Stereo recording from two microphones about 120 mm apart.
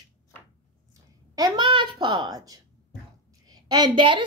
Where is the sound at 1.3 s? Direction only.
30° right (ahead or behind).